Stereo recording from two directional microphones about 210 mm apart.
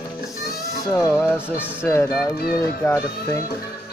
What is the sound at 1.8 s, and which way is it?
Speech, 10° left (ahead or behind).